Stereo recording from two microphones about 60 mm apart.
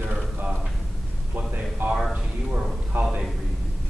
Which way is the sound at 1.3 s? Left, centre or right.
Right.